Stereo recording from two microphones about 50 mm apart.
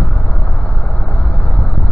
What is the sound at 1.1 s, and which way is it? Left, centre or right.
Vehicle, left.